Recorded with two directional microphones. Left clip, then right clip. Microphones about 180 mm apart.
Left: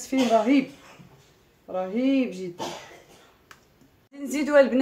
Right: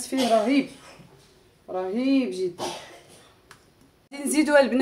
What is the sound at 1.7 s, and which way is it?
Speech, 35° right (ahead or behind).